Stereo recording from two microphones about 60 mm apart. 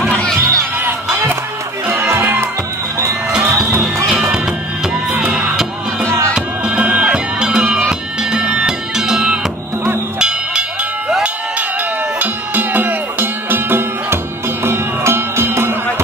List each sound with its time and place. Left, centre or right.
0.2 s music: centre
2.1 s music: right
5.1 s music: right
6.0 s music: right
6.6 s music: right
12.2 s music: right